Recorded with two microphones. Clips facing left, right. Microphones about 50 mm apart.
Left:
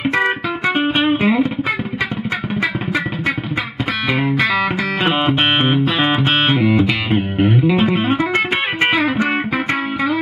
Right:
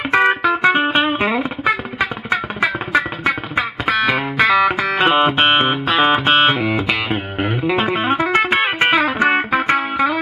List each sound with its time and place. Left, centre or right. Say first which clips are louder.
0.1 s music: right 4 dB; centre
1.2 s music: left 3 dB; centre
2.6 s music: right 3 dB; centre
4.0 s music: even; centre